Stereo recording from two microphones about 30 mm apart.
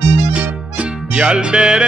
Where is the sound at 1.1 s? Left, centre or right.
Right.